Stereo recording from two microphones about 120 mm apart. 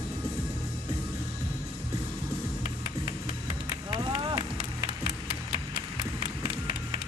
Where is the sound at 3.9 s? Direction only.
35° right (ahead or behind).